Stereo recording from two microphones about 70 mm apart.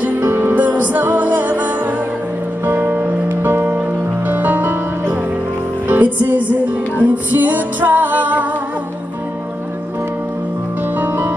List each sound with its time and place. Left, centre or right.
0.2 s music: right
11.0 s music: right